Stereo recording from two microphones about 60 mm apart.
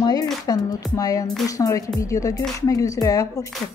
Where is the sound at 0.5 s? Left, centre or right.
Left.